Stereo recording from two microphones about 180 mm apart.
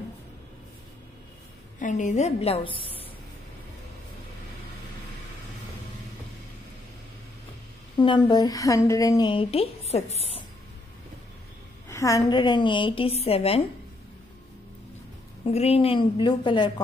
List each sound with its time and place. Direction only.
1.8 s a woman's voice: 45° left (ahead or behind)
8.0 s a woman's voice: 25° left (ahead or behind)
11.9 s a woman's voice: 15° left (ahead or behind); by 13.7 s 35° left (ahead or behind)
15.4 s a woman's voice: 35° left (ahead or behind)